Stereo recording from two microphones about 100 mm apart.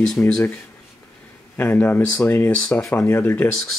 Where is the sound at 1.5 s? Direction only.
20° left (ahead or behind).